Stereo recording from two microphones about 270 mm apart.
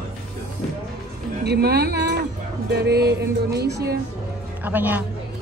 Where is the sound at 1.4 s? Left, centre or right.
Right.